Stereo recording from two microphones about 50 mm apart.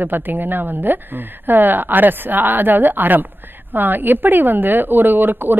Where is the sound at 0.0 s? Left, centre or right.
Right.